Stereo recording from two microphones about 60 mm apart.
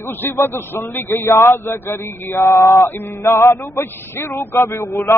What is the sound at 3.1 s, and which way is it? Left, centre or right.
Speech, left.